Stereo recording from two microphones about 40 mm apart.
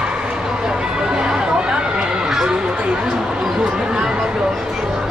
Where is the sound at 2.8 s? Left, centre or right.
Right.